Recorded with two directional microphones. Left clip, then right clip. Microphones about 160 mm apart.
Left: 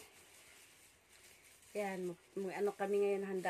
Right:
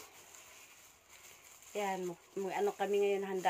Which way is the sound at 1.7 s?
15° left (ahead or behind).